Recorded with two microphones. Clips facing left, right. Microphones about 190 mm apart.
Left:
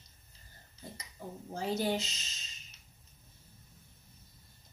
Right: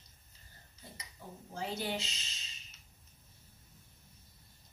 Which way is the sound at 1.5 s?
40° left (ahead or behind).